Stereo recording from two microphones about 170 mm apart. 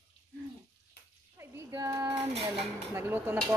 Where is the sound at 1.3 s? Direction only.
20° right (ahead or behind).